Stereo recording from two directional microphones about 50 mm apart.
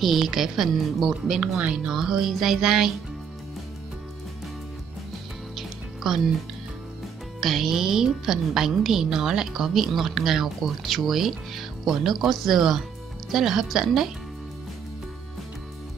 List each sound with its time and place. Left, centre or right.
0.0 s a woman's voice: centre
1.4 s speech: right
1.9 s music: centre
5.6 s music: centre
7.3 s a woman's voice: centre
13.3 s music: centre